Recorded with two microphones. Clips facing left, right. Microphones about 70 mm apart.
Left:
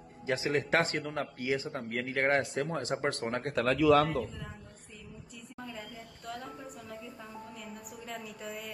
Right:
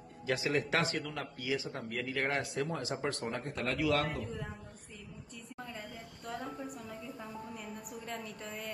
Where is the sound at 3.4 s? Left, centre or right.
Left.